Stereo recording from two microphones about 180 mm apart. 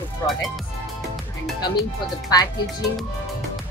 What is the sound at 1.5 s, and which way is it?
Speech, 25° left (ahead or behind).